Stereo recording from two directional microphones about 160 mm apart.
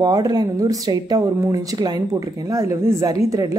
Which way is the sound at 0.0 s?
25° right (ahead or behind).